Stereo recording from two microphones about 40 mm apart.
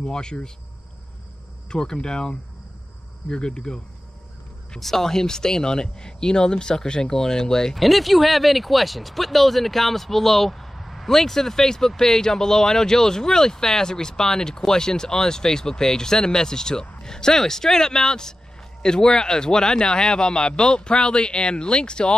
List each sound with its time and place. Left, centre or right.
0.0 s speech: centre
1.7 s speech: centre
4.7 s speech: centre
7.7 s speech: centre; by 22.1 s left